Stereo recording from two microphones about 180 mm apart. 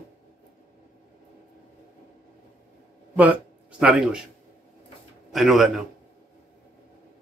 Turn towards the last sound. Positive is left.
turn(degrees=0)  # may be behind; listen again after turning